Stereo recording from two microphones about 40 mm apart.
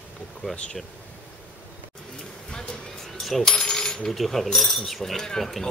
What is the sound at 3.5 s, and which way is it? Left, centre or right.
Coin, centre.